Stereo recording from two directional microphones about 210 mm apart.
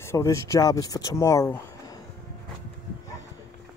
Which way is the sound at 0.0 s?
15° left (ahead or behind).